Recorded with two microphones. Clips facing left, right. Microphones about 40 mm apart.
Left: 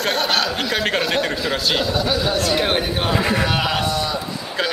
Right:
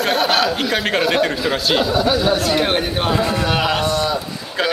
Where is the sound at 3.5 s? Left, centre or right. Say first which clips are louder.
Right 2 dB; centre.